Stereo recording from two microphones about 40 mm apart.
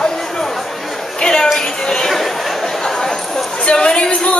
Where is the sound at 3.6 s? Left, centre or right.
Left.